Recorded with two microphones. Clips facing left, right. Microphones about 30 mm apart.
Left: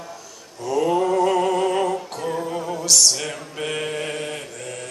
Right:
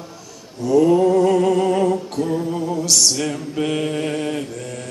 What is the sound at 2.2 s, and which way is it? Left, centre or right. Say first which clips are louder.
Mantra: right 2 dB; centre.